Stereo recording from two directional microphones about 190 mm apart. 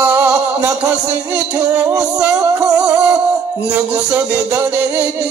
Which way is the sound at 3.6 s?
5° right (ahead or behind).